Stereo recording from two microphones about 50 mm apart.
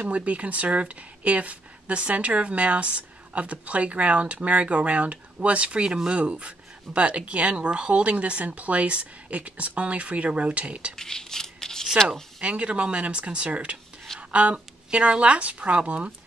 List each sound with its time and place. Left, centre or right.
0.0 s speech: right
11.0 s a sound: centre
12.4 s speech: right